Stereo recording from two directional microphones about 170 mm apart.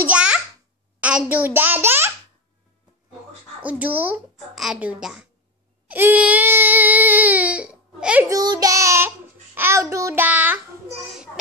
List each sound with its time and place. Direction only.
0.0 s a sound: 5° right (ahead or behind)
1.0 s a child's voice: 10° right (ahead or behind)
3.6 s a child's voice: 10° right (ahead or behind)
5.9 s baby cry: 10° right (ahead or behind)
8.3 s a child's voice: 20° right (ahead or behind)